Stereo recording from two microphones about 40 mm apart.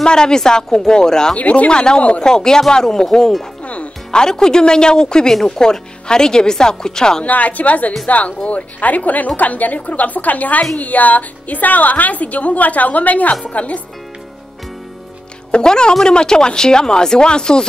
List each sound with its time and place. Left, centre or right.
0.0 s speech: centre
1.3 s a woman's voice: left
1.7 s speech: left
2.2 s speech: centre
3.6 s music: left
4.1 s speech: centre
7.2 s a woman's voice: left
15.5 s speech: centre